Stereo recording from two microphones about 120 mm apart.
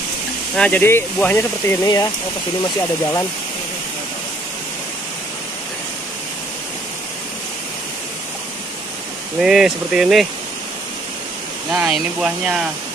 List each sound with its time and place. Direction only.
0.6 s speech: 15° left (ahead or behind)
2.6 s speech: 30° left (ahead or behind)
9.4 s speech: 5° right (ahead or behind)
11.7 s speech: 10° right (ahead or behind)